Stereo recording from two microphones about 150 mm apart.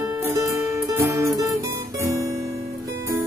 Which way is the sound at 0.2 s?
20° right (ahead or behind).